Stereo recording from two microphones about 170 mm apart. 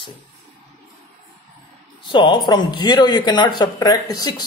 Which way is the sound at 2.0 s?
25° left (ahead or behind).